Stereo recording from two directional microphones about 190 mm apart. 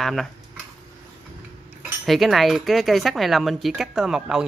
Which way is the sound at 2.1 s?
Centre (ahead or behind).